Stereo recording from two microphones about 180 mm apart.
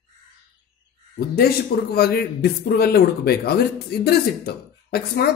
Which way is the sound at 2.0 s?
60° left (ahead or behind).